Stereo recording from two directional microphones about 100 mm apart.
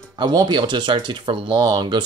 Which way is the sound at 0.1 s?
45° right (ahead or behind).